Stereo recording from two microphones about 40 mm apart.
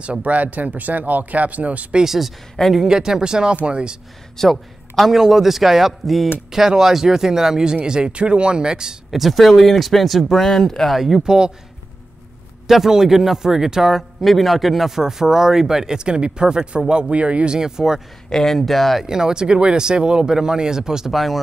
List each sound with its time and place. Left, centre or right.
0.0 s speech: right
2.0 s a man's voice: centre; by 4.0 s right
4.4 s a man's voice: centre
9.1 s a man's voice: centre
11.0 s speech: centre
12.6 s speech: centre
14.2 s speech: centre; by 17.0 s right
17.1 s speech: right
17.6 s speech: centre
18.3 s a man's voice: centre
19.0 s speech: centre
21.1 s a man's voice: centre